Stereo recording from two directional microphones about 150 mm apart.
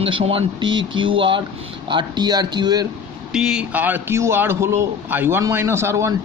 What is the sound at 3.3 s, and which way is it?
A man's voice, 5° right (ahead or behind).